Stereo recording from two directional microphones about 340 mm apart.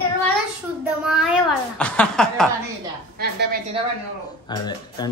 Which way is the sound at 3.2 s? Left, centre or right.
Right.